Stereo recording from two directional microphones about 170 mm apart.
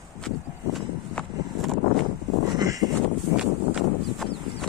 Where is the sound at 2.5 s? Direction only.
20° right (ahead or behind).